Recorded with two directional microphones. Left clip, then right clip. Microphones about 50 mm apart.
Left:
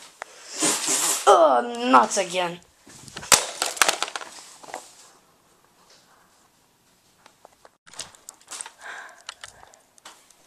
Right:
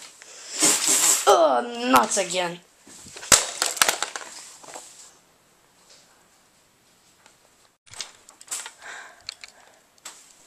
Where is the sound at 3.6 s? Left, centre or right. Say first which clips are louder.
Even; left.